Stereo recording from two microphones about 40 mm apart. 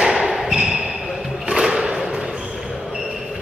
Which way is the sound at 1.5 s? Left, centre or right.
Centre.